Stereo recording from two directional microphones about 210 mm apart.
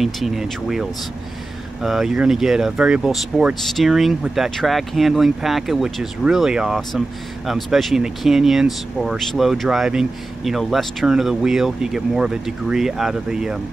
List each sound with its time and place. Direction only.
0.0 s speech: centre (ahead or behind)